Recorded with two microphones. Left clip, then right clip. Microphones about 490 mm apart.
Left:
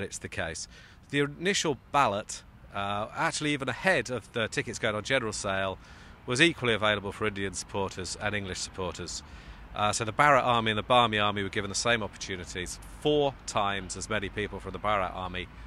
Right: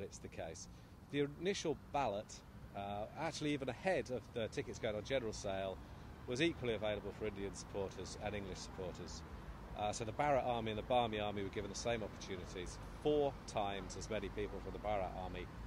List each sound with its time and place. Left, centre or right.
0.0 s speech: left